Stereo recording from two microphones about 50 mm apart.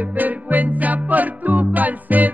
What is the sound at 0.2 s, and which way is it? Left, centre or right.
Music, right.